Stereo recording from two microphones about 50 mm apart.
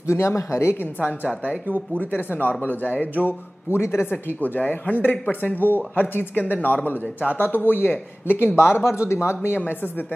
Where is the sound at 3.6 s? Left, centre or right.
Left.